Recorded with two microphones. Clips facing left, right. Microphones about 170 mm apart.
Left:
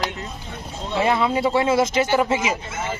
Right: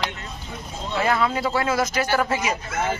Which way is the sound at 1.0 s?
20° left (ahead or behind).